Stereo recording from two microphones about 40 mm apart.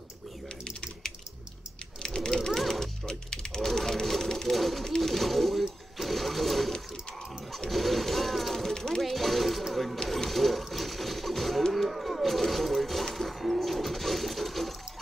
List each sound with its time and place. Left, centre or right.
2.0 s a sound: centre
2.5 s music: centre
3.1 s a sound: centre
4.2 s bird: centre
4.5 s bird: centre
4.8 s sewing machine: centre
7.7 s music: centre
8.7 s music: centre
9.0 s music: centre
10.0 s a sound: centre
13.1 s bird: centre